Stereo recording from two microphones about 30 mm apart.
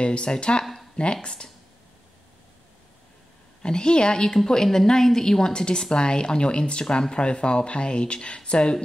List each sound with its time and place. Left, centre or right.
0.0 s speech: left
3.6 s a woman's voice: left
4.6 s a woman's voice: centre; by 8.7 s left